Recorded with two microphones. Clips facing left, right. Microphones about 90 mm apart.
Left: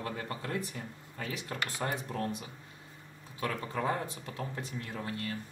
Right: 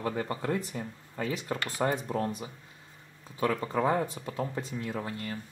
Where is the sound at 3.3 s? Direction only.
40° right (ahead or behind).